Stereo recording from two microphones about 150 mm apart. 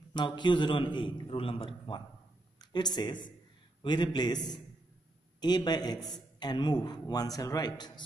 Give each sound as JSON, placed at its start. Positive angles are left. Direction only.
{"t": 0.1, "sound": "a man's voice", "side_deg": 30}